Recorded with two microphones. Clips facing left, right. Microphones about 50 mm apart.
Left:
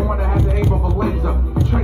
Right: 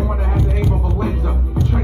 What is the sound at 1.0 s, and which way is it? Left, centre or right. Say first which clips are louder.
Music: left 2 dB; centre.